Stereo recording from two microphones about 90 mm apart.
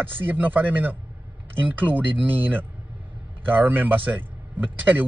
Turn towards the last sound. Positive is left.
turn(degrees=-20)  # may be behind; listen again after turning